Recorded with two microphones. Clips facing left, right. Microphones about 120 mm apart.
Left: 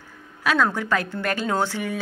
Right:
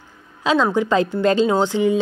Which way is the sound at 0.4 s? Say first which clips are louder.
Right 4 dB; 20° right (ahead or behind).